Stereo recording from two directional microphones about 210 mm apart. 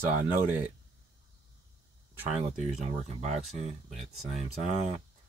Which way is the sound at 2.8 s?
30° right (ahead or behind).